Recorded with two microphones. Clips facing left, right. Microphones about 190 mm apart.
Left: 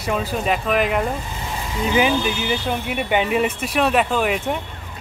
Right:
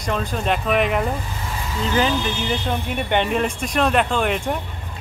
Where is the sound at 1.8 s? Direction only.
10° left (ahead or behind).